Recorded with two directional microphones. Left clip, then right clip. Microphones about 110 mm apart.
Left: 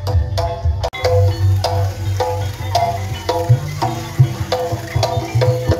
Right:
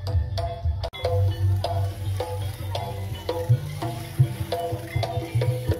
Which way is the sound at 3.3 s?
90° left.